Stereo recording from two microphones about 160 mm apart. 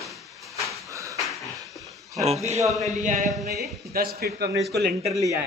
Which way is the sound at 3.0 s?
55° right (ahead or behind).